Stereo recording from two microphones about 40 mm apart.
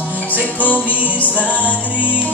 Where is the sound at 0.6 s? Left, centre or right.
Left.